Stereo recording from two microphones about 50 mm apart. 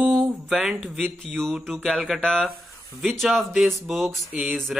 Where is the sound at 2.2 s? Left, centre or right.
Centre.